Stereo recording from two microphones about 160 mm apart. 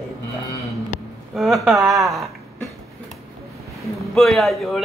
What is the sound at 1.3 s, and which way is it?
Speech, centre (ahead or behind).